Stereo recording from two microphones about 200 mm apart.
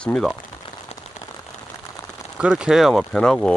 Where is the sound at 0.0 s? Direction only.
5° left (ahead or behind).